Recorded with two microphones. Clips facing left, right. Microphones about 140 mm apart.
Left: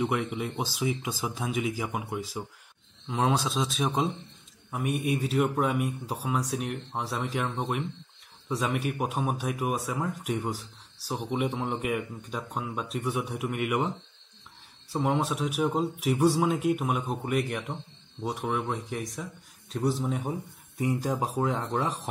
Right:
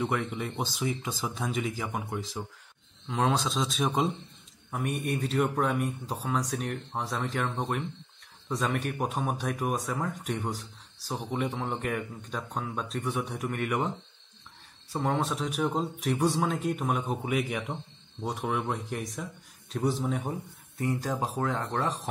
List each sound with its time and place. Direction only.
0.0 s speech: 10° left (ahead or behind)
20.7 s speech: 10° left (ahead or behind)